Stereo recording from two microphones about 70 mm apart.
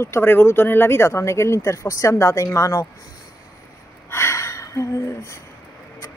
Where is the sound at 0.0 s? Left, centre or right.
Left.